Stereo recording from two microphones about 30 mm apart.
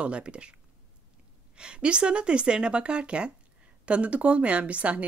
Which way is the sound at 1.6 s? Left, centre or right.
Right.